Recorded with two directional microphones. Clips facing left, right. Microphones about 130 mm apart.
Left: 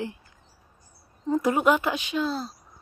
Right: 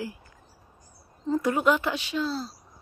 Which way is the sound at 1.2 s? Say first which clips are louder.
Left 2 dB; 20° left (ahead or behind).